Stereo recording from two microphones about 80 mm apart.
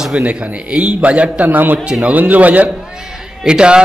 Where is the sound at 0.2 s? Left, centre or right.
Centre.